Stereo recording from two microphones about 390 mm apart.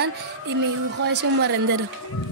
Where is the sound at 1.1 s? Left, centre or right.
Right.